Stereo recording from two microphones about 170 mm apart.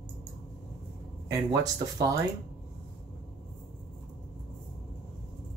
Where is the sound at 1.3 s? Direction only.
25° right (ahead or behind).